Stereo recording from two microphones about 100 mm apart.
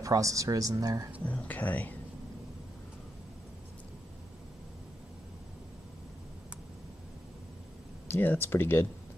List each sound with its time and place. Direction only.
0.0 s speech: 35° right (ahead or behind)
1.2 s speech: 15° left (ahead or behind)
8.1 s speech: 20° left (ahead or behind)